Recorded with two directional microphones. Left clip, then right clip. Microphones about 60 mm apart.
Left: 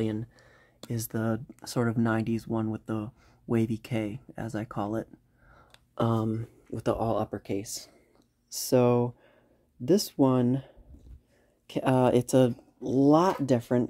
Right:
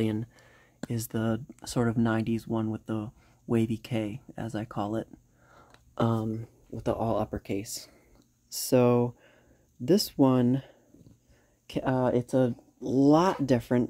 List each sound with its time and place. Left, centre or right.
0.0 s speech: right
0.8 s speech: centre
4.4 s speech: centre
6.0 s speech: centre
11.8 s speech: left
12.8 s speech: centre